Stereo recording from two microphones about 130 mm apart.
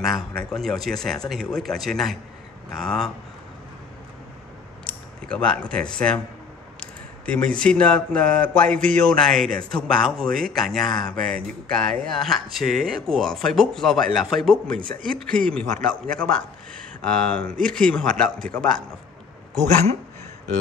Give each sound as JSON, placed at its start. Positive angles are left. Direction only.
{"t": 0.0, "sound": "speech", "side_deg": 0}
{"t": 4.8, "sound": "speech", "side_deg": 10}
{"t": 7.2, "sound": "speech", "side_deg": 10}
{"t": 14.8, "sound": "speech", "side_deg": -90}
{"t": 15.0, "sound": "speech", "side_deg": 5}